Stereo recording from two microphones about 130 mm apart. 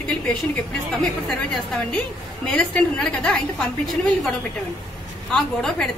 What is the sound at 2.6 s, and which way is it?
Speech, 5° left (ahead or behind).